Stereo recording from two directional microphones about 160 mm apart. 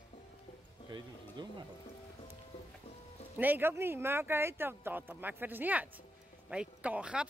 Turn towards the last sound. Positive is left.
turn(degrees=-5)  # may be behind; listen again after turning